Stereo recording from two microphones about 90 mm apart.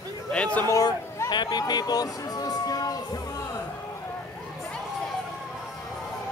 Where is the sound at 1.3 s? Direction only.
50° left (ahead or behind).